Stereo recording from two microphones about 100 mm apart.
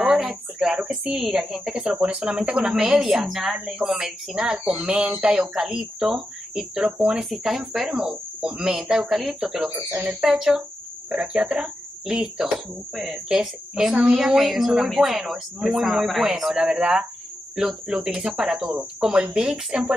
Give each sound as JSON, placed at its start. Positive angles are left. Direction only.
{"t": 0.0, "sound": "a sound", "side_deg": -5}
{"t": 0.7, "sound": "speech", "side_deg": -10}
{"t": 9.7, "sound": "cricket", "side_deg": -15}
{"t": 10.3, "sound": "speech", "side_deg": -5}
{"t": 17.6, "sound": "cricket", "side_deg": -5}